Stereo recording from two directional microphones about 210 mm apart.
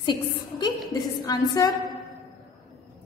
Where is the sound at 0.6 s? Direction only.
20° left (ahead or behind).